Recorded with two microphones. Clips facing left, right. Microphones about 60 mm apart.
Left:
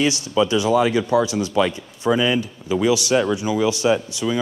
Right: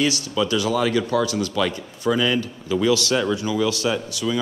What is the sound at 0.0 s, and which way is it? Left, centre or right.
Speech, left.